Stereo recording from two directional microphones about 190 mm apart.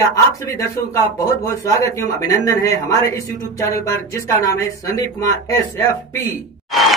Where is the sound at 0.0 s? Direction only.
15° left (ahead or behind).